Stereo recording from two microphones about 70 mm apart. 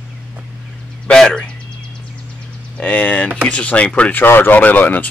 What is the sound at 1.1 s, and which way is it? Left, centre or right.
Speech, centre.